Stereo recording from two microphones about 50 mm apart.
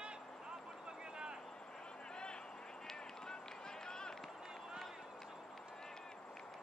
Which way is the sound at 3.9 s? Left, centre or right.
Centre.